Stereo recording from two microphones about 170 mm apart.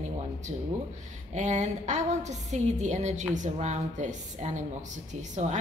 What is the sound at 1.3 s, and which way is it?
A woman's voice, 45° right (ahead or behind).